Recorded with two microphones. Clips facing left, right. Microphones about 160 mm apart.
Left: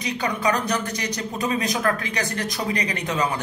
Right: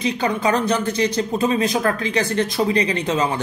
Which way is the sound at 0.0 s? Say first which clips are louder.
Right 4 dB; 30° right (ahead or behind).